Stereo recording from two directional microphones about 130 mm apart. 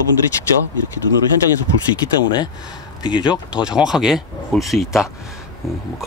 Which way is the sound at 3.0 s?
35° left (ahead or behind).